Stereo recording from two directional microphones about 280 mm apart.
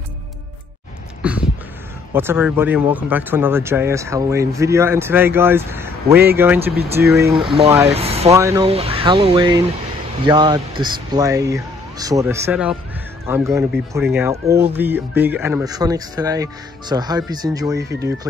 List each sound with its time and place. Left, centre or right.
1.2 s a sound: centre
2.1 s speech: centre
7.9 s speech: right
8.3 s speech: centre